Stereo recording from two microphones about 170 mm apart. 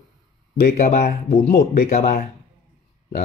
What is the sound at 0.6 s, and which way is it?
Speech, 60° left (ahead or behind).